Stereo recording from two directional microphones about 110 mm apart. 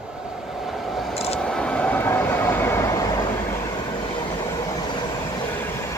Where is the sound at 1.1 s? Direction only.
65° left (ahead or behind).